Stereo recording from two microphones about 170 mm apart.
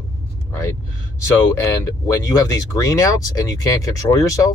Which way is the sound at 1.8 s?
20° left (ahead or behind).